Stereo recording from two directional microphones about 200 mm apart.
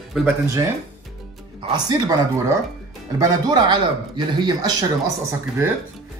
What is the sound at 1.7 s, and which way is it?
Speech, 20° right (ahead or behind).